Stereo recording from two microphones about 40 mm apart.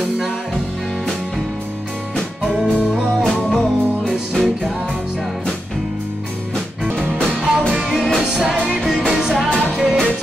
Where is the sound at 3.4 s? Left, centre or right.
Left.